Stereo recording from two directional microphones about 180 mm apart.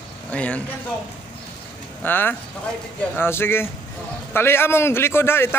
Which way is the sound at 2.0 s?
10° left (ahead or behind).